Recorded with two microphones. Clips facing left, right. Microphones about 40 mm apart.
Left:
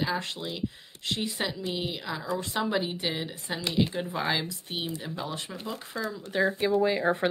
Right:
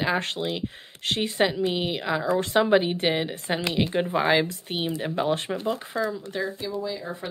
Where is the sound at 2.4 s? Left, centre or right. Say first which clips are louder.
Right 8 dB; right.